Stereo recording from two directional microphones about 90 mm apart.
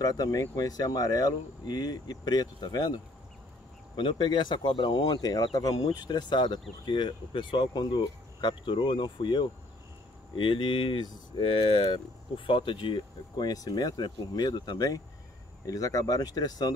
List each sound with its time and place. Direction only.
0.0 s speech: 45° left (ahead or behind)
3.9 s speech: 60° left (ahead or behind); by 5.9 s 40° left (ahead or behind)
5.9 s speech: 55° left (ahead or behind)